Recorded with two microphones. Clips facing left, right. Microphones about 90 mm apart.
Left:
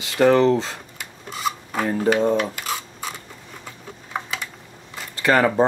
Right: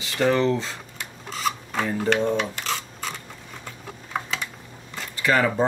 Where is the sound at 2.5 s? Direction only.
10° left (ahead or behind).